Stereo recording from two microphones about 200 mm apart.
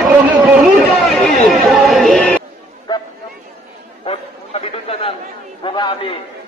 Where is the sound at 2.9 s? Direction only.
20° left (ahead or behind).